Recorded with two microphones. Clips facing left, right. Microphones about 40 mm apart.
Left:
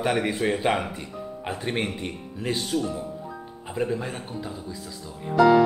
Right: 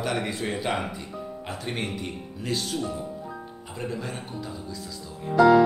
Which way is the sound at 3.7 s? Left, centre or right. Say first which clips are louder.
Left 6 dB; left.